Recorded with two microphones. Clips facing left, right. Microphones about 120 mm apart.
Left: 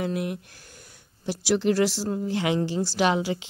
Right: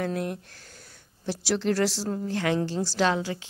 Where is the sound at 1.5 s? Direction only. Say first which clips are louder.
Left 3 dB; 10° left (ahead or behind).